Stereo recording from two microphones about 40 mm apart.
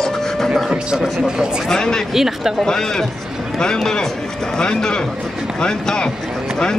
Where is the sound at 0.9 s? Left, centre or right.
Centre.